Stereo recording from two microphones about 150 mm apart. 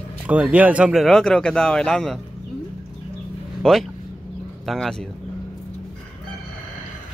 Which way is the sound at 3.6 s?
5° left (ahead or behind).